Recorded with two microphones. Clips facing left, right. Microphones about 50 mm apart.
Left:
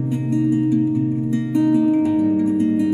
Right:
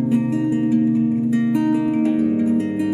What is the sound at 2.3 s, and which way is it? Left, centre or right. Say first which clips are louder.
Music: even; centre.